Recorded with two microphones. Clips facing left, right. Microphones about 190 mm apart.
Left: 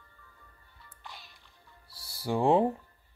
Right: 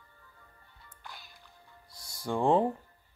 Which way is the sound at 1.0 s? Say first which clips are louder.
Even; centre (ahead or behind).